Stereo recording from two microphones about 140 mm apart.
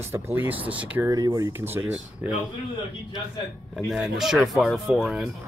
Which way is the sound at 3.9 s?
5° right (ahead or behind).